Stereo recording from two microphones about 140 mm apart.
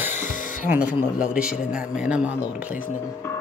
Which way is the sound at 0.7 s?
10° right (ahead or behind).